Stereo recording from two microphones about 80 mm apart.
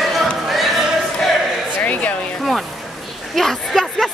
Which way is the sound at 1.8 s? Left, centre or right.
Centre.